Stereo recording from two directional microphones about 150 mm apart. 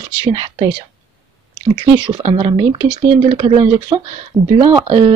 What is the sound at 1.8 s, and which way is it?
Speech, 30° right (ahead or behind).